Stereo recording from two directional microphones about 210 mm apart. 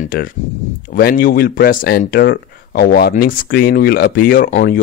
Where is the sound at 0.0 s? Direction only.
45° left (ahead or behind).